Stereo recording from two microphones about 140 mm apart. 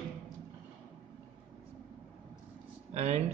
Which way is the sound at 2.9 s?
55° right (ahead or behind).